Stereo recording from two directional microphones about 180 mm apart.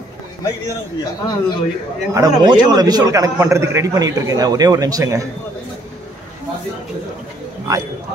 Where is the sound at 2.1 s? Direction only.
20° right (ahead or behind).